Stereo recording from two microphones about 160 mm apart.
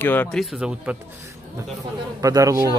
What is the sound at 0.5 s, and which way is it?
Speech, 5° right (ahead or behind).